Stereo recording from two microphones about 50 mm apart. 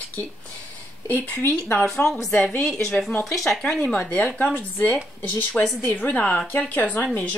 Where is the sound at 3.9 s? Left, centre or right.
Left.